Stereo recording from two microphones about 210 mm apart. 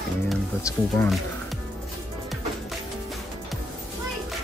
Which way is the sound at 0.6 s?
15° left (ahead or behind).